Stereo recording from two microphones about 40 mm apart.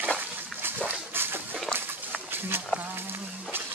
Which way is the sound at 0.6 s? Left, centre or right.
Right.